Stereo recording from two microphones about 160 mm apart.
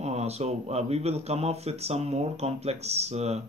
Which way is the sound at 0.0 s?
40° right (ahead or behind).